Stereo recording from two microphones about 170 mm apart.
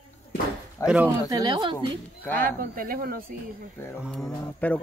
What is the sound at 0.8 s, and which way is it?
Speech, 10° right (ahead or behind).